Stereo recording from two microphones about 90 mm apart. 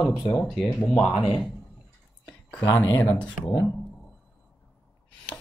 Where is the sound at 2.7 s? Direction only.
40° left (ahead or behind).